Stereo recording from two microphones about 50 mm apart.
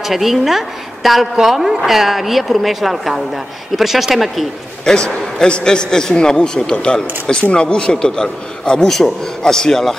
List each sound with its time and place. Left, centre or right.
0.0 s a woman's voice: centre
4.8 s a man's voice: centre